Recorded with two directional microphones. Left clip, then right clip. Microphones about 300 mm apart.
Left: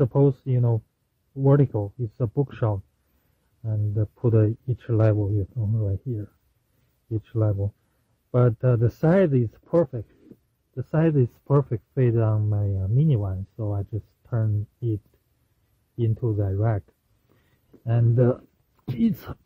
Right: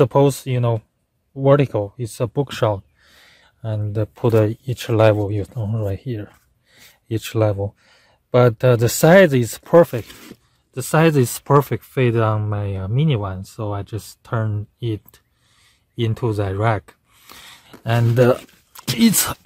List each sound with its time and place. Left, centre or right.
0.0 s speech: centre
16.0 s speech: centre